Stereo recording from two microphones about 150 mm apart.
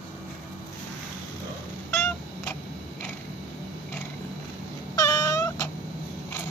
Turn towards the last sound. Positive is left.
turn(degrees=25)  # may be behind; listen again after turning